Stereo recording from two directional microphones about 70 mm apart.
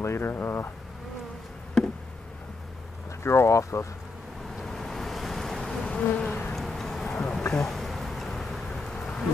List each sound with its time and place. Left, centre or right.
0.0 s speech: left
3.3 s speech: left
4.6 s bee: centre; by 6.5 s left
6.5 s a sound: centre
7.6 s bee: centre